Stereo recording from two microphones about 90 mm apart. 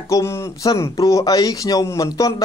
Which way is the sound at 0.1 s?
35° left (ahead or behind).